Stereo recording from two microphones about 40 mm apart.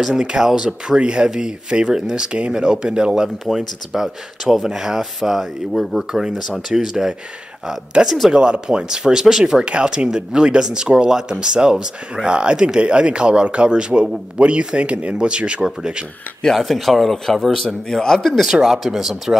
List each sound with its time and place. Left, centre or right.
0.1 s speech: right
3.5 s speech: centre
16.5 s a man's voice: centre
18.4 s speech: centre